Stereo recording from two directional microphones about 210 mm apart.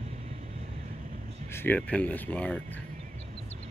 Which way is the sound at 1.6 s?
5° left (ahead or behind).